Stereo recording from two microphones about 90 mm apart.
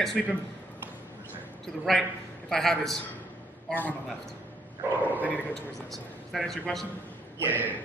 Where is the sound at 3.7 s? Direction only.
20° left (ahead or behind).